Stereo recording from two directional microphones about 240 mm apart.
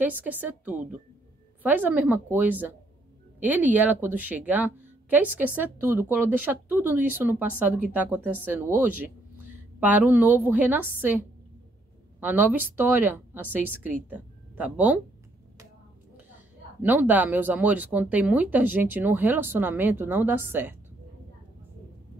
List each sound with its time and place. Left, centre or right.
0.0 s speech: centre
16.8 s speech: centre